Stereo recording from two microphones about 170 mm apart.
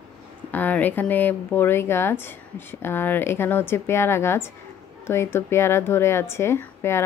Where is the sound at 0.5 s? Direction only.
10° left (ahead or behind).